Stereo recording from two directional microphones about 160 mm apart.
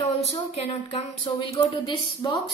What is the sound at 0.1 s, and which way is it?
Speech, 40° left (ahead or behind).